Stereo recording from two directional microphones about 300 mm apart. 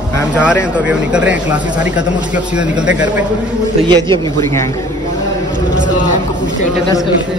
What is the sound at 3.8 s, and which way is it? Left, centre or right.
Speech, centre.